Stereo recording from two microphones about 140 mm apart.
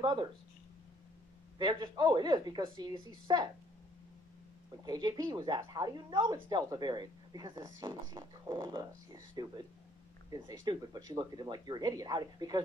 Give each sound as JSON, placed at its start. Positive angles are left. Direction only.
{"t": 0.0, "sound": "a woman's voice", "side_deg": -35}
{"t": 1.6, "sound": "a woman's voice", "side_deg": -35}
{"t": 4.8, "sound": "a woman's voice", "side_deg": -30}
{"t": 10.3, "sound": "speech", "side_deg": -25}